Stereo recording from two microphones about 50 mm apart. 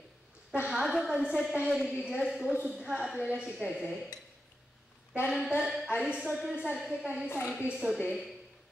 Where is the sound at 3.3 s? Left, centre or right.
Right.